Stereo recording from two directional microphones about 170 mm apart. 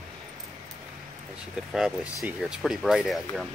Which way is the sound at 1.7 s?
5° right (ahead or behind).